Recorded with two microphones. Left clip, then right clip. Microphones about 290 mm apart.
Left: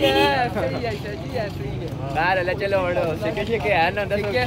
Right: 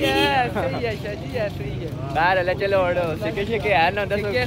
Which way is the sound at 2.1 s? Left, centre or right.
Centre.